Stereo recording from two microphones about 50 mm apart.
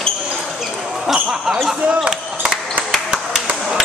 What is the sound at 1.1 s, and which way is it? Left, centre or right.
Speech, centre.